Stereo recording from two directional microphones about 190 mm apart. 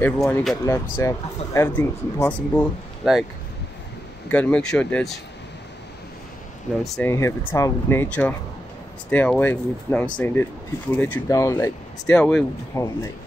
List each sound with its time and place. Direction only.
0.0 s speech: 5° left (ahead or behind)
0.9 s speech: 15° left (ahead or behind)
4.3 s speech: 5° left (ahead or behind)
6.8 s speech: 15° left (ahead or behind)
12.1 s speech: 5° left (ahead or behind)
12.7 s speech: 20° left (ahead or behind)